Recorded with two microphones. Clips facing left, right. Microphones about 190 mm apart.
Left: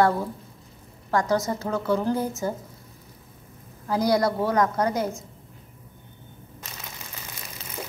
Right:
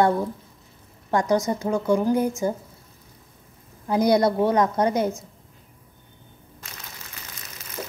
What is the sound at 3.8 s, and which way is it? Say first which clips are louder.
A woman's voice: right 3 dB; 20° right (ahead or behind).